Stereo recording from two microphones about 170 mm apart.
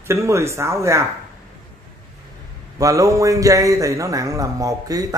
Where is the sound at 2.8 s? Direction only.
20° right (ahead or behind).